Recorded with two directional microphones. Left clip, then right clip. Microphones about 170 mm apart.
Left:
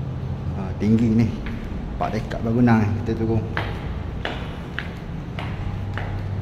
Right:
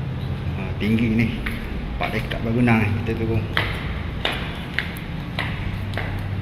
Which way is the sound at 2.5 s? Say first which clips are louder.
Even; 25° left (ahead or behind).